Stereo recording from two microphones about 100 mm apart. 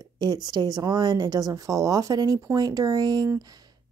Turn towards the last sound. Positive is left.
turn(degrees=-40)  # may be behind; listen again after turning